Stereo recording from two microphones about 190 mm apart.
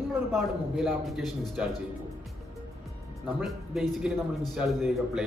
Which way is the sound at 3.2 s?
Centre (ahead or behind).